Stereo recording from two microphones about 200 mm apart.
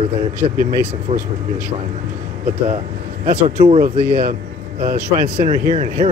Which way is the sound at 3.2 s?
40° right (ahead or behind).